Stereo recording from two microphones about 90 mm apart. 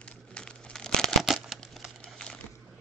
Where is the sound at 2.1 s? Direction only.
10° left (ahead or behind).